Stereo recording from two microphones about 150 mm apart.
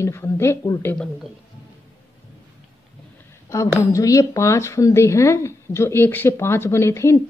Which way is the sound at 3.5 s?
20° left (ahead or behind).